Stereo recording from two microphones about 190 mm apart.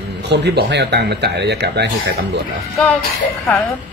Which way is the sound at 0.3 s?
65° right (ahead or behind).